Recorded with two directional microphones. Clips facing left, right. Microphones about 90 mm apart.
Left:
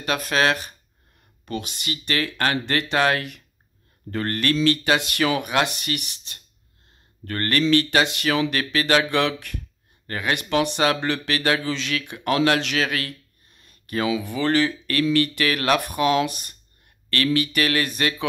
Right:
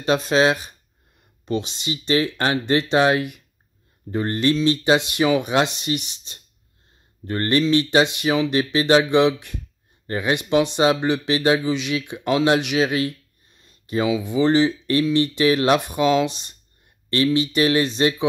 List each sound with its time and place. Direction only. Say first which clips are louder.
0.0 s speech: right 4 dB; 25° right (ahead or behind)
13.6 s a sound: right 3 dB; 20° right (ahead or behind)
14.2 s speech: right 6 dB; 20° right (ahead or behind)